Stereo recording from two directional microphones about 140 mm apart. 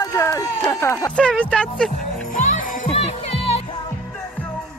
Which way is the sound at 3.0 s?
50° left (ahead or behind).